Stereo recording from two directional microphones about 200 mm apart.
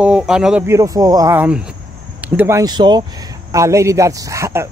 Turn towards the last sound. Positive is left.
turn(degrees=-15)  # may be behind; listen again after turning